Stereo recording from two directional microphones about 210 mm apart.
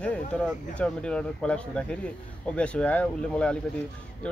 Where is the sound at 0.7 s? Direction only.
5° left (ahead or behind).